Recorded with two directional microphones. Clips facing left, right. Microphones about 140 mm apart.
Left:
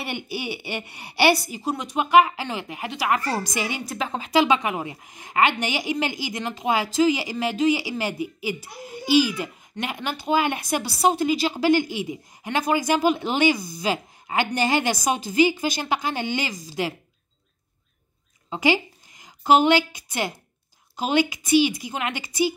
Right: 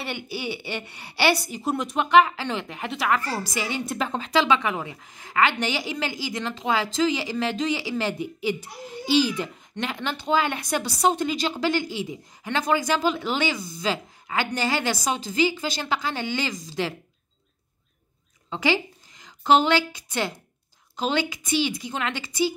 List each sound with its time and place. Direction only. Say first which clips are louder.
0.0 s a woman's voice: left 1 dB; 15° left (ahead or behind)
1.6 s a woman's voice: even; centre (ahead or behind)
3.1 s a woman's voice: left 2 dB; 20° left (ahead or behind)
3.8 s a woman's voice: right 1 dB; centre (ahead or behind)
18.5 s a woman's voice: left 2 dB; 15° left (ahead or behind)